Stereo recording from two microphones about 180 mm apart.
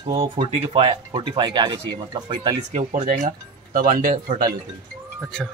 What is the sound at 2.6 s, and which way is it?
Speech, 40° right (ahead or behind).